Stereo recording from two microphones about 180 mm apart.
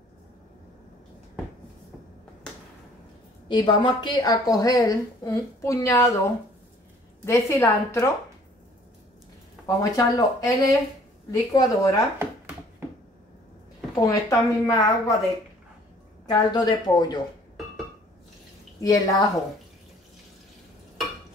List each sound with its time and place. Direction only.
3.4 s a woman's voice: 25° left (ahead or behind)
7.2 s speech: 15° left (ahead or behind)
9.9 s a woman's voice: 20° left (ahead or behind)
13.9 s speech: 15° left (ahead or behind)
16.3 s a woman's voice: 25° left (ahead or behind)
18.8 s a woman's voice: 20° left (ahead or behind)